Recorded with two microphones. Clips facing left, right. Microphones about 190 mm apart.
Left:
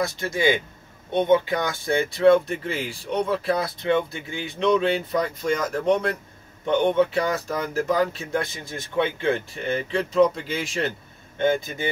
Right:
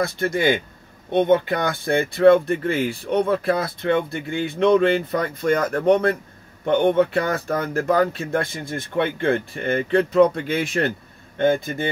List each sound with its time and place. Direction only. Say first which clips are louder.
0.0 s speech: right 2 dB; 55° right (ahead or behind)